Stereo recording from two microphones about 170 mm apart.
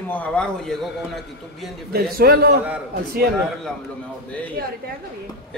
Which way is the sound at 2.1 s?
65° right (ahead or behind).